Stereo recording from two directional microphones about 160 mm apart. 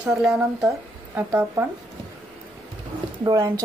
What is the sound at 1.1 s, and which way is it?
Speech, 10° right (ahead or behind).